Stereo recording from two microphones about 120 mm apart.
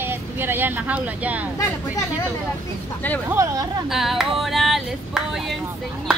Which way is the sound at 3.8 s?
Centre (ahead or behind).